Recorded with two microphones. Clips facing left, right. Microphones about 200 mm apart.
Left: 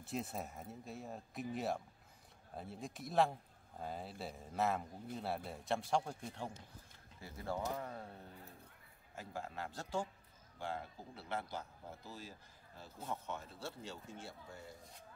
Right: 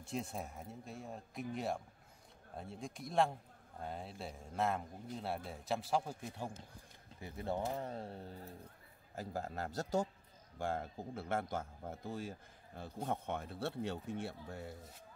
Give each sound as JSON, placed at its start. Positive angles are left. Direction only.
{"t": 0.0, "sound": "speech", "side_deg": 0}
{"t": 7.2, "sound": "a man's voice", "side_deg": -20}